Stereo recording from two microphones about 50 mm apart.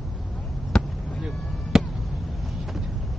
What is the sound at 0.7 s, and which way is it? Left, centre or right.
Basketball bounce, centre.